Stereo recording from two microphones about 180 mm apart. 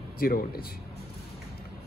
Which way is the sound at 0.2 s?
55° left (ahead or behind).